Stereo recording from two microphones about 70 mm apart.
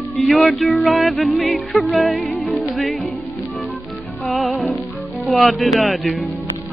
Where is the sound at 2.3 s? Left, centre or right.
Centre.